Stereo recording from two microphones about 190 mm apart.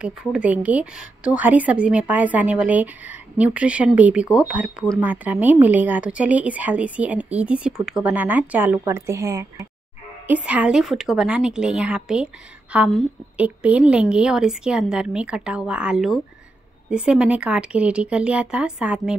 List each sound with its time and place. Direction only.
0.0 s a woman's voice: 5° right (ahead or behind)